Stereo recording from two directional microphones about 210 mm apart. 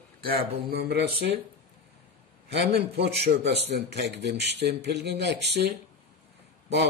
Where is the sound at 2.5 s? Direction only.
50° right (ahead or behind).